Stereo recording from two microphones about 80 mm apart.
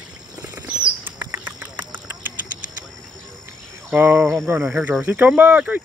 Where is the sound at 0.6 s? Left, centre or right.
Right.